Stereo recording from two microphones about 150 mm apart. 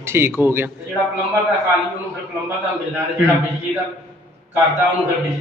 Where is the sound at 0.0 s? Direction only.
15° right (ahead or behind).